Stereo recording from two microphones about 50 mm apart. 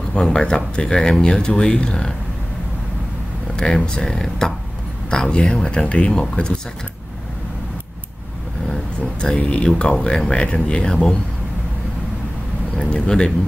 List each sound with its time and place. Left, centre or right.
0.1 s speech: centre
3.5 s speech: centre
8.6 s vehicle: centre
9.4 s speech: left
12.8 s speech: centre